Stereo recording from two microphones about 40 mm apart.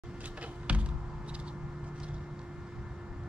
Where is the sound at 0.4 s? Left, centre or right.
Right.